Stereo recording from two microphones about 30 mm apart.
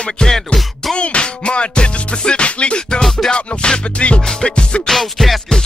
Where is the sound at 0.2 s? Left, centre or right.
Left.